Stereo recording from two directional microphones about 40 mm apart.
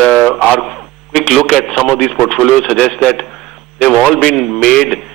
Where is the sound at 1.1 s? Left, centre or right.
Left.